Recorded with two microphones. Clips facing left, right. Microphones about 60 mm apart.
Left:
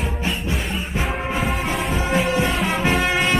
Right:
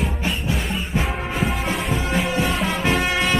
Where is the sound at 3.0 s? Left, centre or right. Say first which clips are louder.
Left 1 dB; centre.